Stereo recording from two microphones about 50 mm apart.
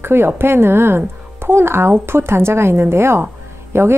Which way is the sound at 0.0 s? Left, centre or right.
Right.